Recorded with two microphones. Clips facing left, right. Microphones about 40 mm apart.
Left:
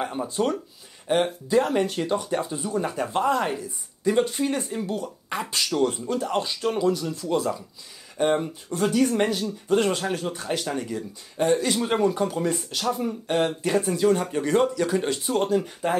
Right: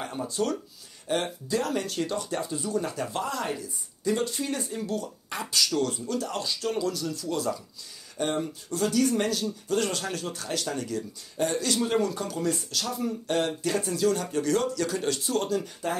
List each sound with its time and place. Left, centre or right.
0.0 s speech: left